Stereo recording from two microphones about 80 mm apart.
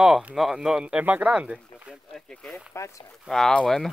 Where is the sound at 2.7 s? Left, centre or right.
Left.